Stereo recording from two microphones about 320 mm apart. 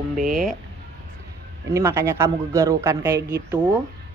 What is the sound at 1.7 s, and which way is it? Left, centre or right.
A man's voice, centre.